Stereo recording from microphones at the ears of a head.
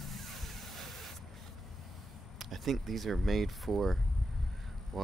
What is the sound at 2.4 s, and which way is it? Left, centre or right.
Speech, right.